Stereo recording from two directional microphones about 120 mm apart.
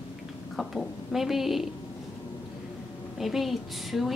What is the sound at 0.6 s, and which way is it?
A woman's voice, centre (ahead or behind).